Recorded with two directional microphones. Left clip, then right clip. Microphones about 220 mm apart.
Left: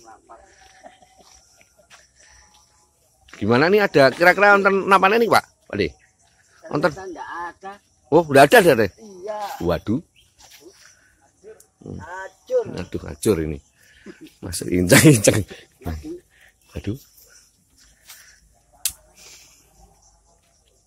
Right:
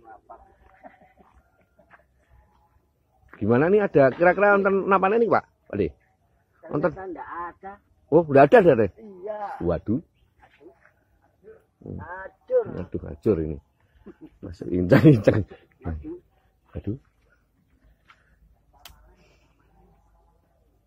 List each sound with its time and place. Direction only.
0.8 s dog: 15° left (ahead or behind)
3.3 s a man's voice: 10° left (ahead or behind)
6.6 s a sound: 10° left (ahead or behind)
9.7 s a man's voice: 15° left (ahead or behind)
12.0 s a man's voice: 20° left (ahead or behind)
15.1 s speech: 10° left (ahead or behind)